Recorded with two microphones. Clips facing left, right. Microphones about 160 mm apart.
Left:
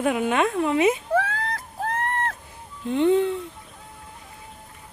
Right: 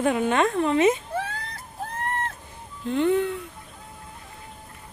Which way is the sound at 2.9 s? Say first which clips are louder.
Left 2 dB; 20° left (ahead or behind).